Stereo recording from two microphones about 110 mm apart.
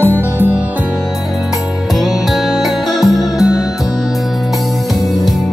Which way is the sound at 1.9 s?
Centre (ahead or behind).